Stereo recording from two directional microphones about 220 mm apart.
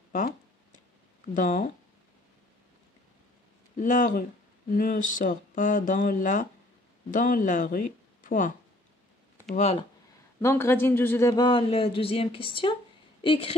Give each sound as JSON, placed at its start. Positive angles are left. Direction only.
{"t": 1.2, "sound": "speech", "side_deg": 35}
{"t": 3.7, "sound": "a man's voice", "side_deg": 35}
{"t": 10.4, "sound": "a man's voice", "side_deg": 10}